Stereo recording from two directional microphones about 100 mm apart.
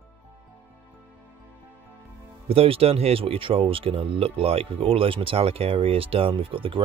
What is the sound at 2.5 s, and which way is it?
Speech, 75° right (ahead or behind).